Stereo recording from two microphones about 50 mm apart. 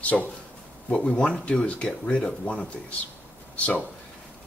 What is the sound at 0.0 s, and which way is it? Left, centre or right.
Speech, left.